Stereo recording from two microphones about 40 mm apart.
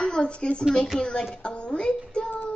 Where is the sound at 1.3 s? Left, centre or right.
Left.